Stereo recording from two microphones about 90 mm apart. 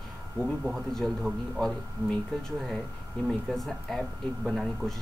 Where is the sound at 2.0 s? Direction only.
25° left (ahead or behind).